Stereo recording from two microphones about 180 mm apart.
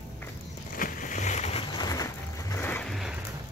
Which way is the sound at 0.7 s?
50° left (ahead or behind).